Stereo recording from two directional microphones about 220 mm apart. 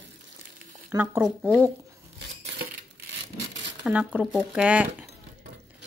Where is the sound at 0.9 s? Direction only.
10° right (ahead or behind).